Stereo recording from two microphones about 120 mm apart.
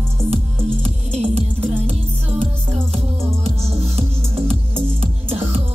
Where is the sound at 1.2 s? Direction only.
55° right (ahead or behind).